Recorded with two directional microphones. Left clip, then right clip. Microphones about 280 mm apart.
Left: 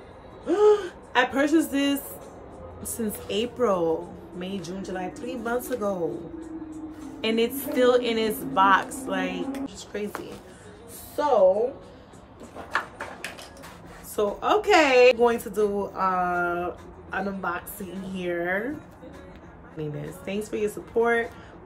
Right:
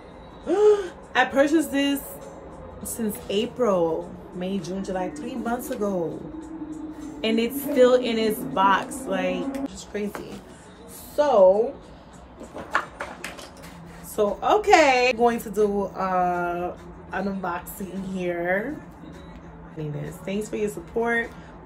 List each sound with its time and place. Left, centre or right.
0.5 s gasp: centre
3.0 s speech: centre
7.2 s speech: centre
14.1 s speech: centre
19.8 s speech: centre